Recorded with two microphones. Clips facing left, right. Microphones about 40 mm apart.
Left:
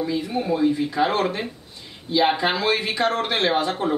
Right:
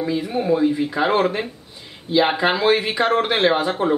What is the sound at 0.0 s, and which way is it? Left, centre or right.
Speech, centre.